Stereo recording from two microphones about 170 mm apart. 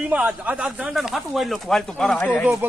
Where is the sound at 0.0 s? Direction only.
10° right (ahead or behind); by 2.4 s 10° left (ahead or behind).